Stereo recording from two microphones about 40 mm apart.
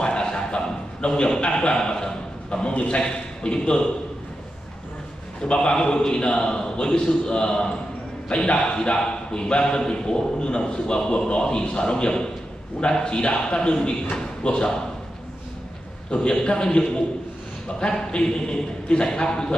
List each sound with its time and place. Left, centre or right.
0.0 s a sound: left
2.7 s a man's voice: left
3.0 s a man's voice: centre
5.4 s a man's voice: left
16.1 s a man's voice: left